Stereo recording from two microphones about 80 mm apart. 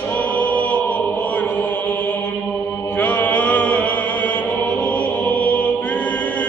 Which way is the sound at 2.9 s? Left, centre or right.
Left.